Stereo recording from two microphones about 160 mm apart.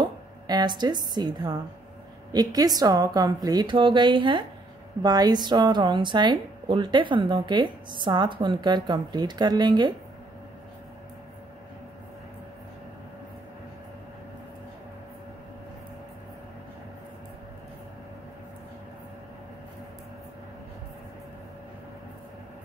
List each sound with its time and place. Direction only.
0.0 s a woman's voice: 25° right (ahead or behind)